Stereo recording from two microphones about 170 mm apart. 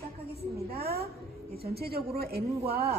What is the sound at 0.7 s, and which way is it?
A woman's voice, 65° right (ahead or behind).